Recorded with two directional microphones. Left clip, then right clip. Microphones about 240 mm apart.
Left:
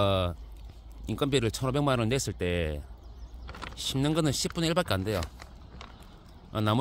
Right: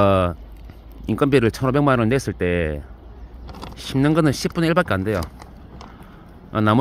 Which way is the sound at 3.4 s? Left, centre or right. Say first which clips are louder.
Right 4 dB; right.